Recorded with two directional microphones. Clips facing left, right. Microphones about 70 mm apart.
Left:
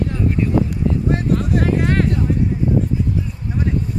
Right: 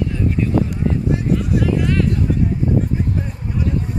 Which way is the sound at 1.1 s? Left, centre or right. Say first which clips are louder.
Even; left.